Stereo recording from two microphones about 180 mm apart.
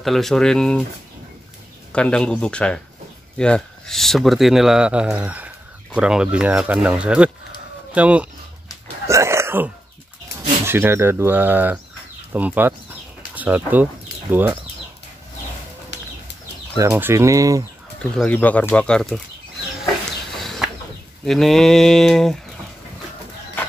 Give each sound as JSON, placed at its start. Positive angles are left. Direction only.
{"t": 0.0, "sound": "speech", "side_deg": 0}
{"t": 1.9, "sound": "speech", "side_deg": 5}
{"t": 9.0, "sound": "a sound", "side_deg": -15}
{"t": 10.7, "sound": "speech", "side_deg": -15}
{"t": 16.7, "sound": "speech", "side_deg": -15}
{"t": 18.1, "sound": "speech", "side_deg": 5}
{"t": 20.3, "sound": "a sound", "side_deg": 0}
{"t": 21.3, "sound": "speech", "side_deg": 0}